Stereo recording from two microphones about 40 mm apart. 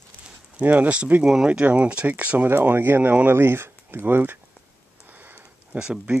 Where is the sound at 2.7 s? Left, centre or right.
Right.